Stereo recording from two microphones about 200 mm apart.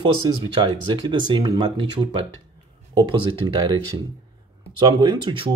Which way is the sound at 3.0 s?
25° right (ahead or behind).